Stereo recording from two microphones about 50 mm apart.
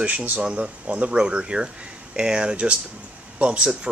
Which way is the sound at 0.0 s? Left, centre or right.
Right.